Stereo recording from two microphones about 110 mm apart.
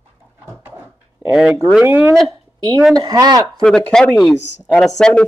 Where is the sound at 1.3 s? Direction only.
5° right (ahead or behind).